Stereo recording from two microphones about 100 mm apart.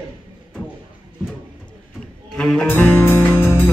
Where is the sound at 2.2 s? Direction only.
5° left (ahead or behind).